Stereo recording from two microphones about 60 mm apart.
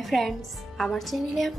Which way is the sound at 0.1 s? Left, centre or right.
Centre.